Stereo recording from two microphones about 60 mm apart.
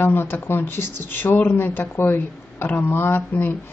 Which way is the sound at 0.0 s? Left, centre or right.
Left.